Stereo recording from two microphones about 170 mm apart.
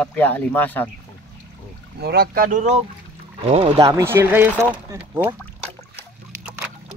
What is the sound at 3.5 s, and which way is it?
Speech, 35° right (ahead or behind).